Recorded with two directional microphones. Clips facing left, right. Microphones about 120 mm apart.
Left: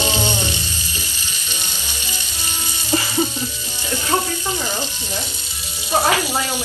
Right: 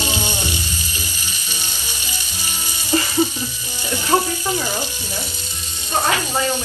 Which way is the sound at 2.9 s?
10° left (ahead or behind).